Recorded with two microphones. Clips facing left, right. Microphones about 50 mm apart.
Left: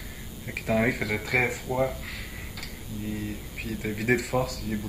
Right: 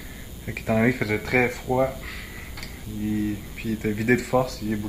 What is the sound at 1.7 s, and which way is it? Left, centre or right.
Speech, centre.